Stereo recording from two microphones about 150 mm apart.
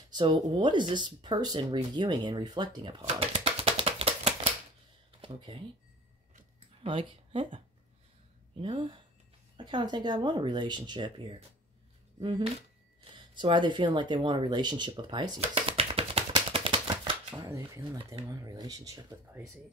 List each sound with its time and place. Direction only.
0.1 s speech: 30° right (ahead or behind)
6.8 s speech: 35° right (ahead or behind)
15.5 s a sound: 40° right (ahead or behind)
16.8 s typewriter: 30° right (ahead or behind)
17.5 s speech: 20° right (ahead or behind)